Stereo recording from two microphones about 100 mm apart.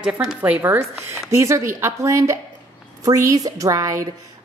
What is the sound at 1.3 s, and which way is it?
A woman's voice, 30° right (ahead or behind).